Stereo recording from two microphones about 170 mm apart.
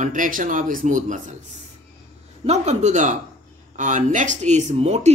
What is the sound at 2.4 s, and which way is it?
Speech, 45° right (ahead or behind).